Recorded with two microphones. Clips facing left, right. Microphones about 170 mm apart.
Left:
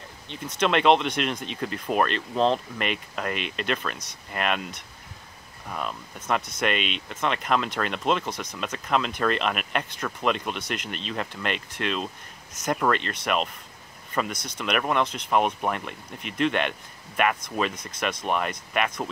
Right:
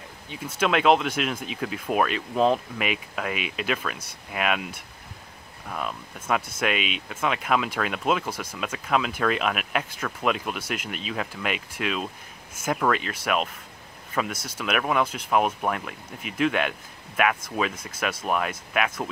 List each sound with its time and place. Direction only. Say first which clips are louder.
0.3 s speech: even; 5° right (ahead or behind)